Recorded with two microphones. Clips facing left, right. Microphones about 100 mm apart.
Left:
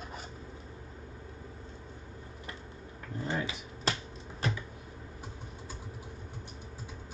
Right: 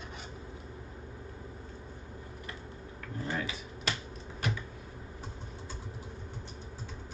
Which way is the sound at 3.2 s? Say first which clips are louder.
Left 1 dB; 25° left (ahead or behind).